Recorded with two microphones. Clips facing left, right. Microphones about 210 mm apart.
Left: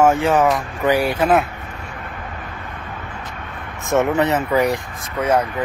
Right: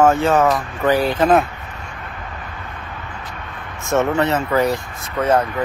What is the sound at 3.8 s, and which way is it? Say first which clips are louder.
Speech: even; 15° left (ahead or behind).